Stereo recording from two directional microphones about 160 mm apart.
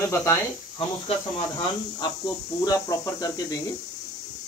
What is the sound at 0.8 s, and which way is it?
Speech, 35° left (ahead or behind).